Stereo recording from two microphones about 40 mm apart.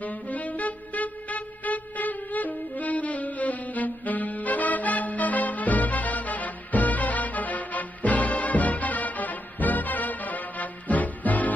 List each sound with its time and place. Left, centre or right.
0.0 s music: left